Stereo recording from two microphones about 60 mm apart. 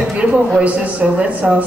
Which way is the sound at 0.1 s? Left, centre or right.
Right.